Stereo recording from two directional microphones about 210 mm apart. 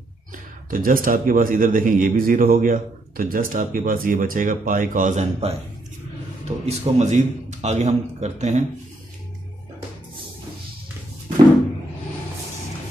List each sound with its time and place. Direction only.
0.7 s a man's voice: 40° right (ahead or behind)
6.6 s a man's voice: 30° right (ahead or behind)